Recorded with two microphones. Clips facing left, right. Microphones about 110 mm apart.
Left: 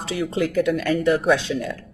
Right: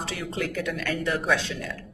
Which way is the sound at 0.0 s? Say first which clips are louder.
Left 7 dB; 15° left (ahead or behind).